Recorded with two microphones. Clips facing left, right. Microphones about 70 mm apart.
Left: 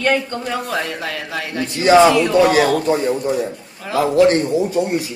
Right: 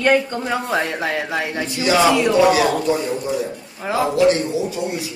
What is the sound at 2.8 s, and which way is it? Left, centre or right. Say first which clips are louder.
A man's voice: left 3 dB; left.